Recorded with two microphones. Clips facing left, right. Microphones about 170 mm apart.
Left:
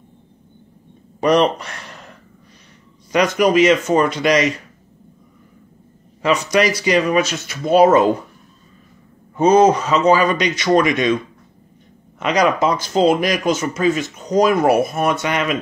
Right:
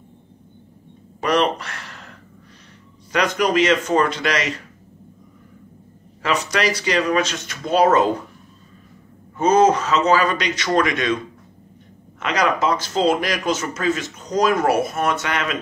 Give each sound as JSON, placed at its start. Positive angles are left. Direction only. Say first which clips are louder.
{"t": 1.2, "sound": "speech", "louder": "left 4 dB", "side_deg": 20}
{"t": 3.1, "sound": "speech", "louder": "left 4 dB", "side_deg": 10}
{"t": 6.2, "sound": "speech", "louder": "left 5 dB", "side_deg": 15}
{"t": 9.4, "sound": "speech", "louder": "left 3 dB", "side_deg": 15}
{"t": 12.2, "sound": "speech", "louder": "left 4 dB", "side_deg": 15}